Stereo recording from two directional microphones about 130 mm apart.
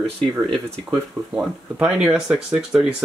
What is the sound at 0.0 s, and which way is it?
Speech, 45° right (ahead or behind).